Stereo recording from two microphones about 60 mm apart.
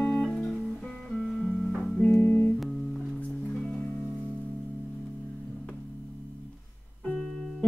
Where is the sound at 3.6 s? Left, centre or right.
Left.